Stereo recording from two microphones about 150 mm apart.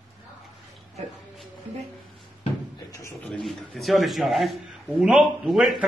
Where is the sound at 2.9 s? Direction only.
20° left (ahead or behind).